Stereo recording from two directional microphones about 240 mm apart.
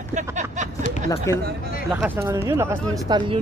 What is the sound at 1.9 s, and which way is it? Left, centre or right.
Speech, centre.